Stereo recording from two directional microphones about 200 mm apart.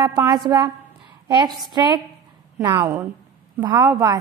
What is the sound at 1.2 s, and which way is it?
Speech, 20° right (ahead or behind).